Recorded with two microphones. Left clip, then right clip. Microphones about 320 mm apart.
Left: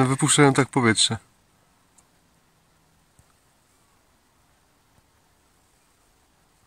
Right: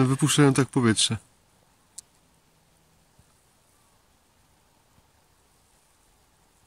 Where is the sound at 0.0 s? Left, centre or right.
Centre.